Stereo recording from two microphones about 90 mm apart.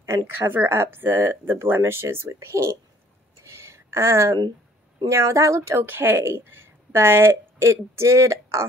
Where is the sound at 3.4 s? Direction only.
30° right (ahead or behind).